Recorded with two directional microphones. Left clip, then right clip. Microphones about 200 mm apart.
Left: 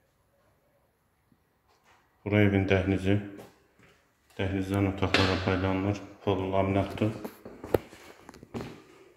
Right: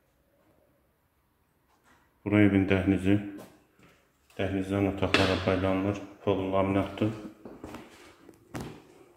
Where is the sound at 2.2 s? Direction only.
5° right (ahead or behind).